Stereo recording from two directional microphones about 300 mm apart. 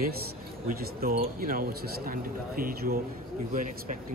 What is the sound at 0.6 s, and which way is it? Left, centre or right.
Speech, right.